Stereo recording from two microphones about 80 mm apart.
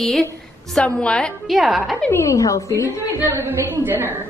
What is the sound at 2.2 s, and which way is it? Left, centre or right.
Speech, left.